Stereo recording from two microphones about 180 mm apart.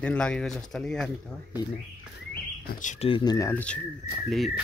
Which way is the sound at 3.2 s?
20° left (ahead or behind).